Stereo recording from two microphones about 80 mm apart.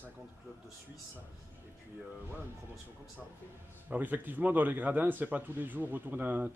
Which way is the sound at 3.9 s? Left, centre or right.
Right.